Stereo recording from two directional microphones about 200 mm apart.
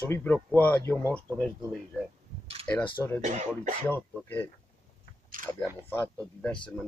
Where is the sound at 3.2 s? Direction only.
35° right (ahead or behind).